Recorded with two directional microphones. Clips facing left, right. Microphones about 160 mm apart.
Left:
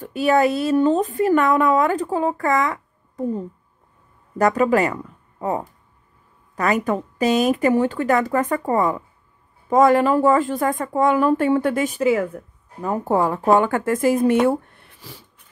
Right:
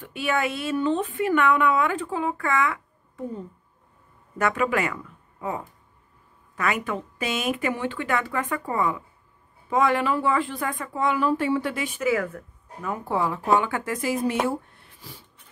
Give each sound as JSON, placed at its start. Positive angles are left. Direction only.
{"t": 0.0, "sound": "speech", "side_deg": 40}
{"t": 12.0, "sound": "speech", "side_deg": 30}
{"t": 14.4, "sound": "a sound", "side_deg": 60}